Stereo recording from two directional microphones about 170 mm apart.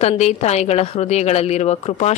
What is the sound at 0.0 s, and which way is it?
A woman's voice, 40° left (ahead or behind).